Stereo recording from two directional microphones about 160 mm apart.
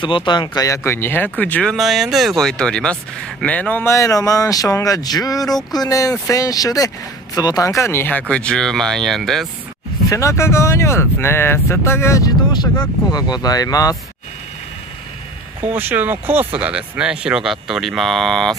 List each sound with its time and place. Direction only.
0.0 s speech: 30° left (ahead or behind); by 9.5 s centre (ahead or behind)
10.0 s speech: 20° left (ahead or behind)
15.6 s speech: 10° right (ahead or behind)